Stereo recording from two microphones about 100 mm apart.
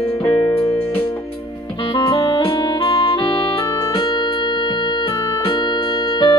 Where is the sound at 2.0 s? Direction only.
50° left (ahead or behind).